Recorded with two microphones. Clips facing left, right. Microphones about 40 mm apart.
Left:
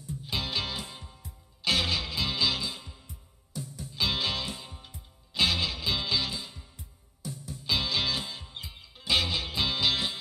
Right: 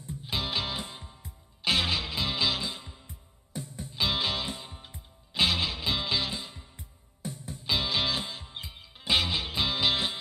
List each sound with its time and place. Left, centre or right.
0.3 s music: centre
3.1 s music: right
3.9 s music: centre
6.8 s music: right
7.6 s music: centre